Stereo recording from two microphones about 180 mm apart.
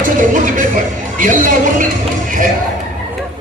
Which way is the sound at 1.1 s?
45° right (ahead or behind).